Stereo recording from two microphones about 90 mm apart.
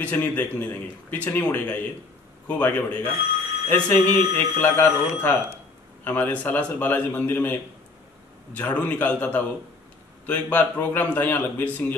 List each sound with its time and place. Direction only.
0.0 s a man's voice: 20° left (ahead or behind)